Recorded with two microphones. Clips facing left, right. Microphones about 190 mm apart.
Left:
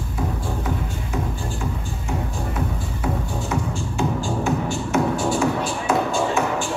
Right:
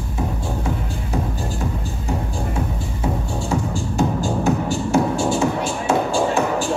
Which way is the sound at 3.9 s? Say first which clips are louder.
Right 3 dB; 40° right (ahead or behind).